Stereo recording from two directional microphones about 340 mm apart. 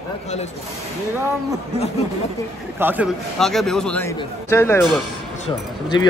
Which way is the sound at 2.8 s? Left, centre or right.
Centre.